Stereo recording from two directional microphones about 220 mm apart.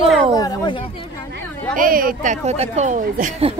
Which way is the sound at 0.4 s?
15° left (ahead or behind).